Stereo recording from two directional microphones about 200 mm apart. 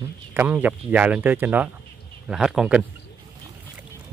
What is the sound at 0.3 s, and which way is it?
Speech, 10° right (ahead or behind).